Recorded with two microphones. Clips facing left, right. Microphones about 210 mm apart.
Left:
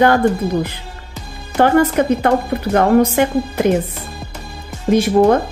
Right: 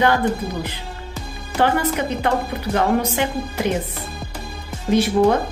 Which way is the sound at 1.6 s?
50° left (ahead or behind).